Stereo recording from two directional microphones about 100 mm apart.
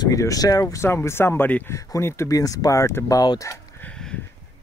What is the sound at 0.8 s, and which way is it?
Speech, 25° left (ahead or behind).